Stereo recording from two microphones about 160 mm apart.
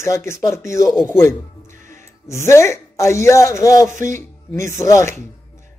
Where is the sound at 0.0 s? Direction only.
20° left (ahead or behind).